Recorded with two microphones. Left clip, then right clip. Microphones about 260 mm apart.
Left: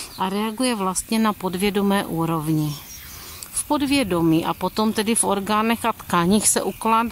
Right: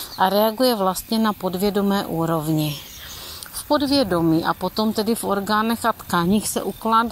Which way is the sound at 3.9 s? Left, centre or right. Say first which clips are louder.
Right 1 dB; left.